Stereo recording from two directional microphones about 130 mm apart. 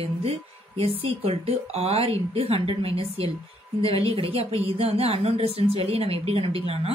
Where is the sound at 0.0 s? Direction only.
50° right (ahead or behind).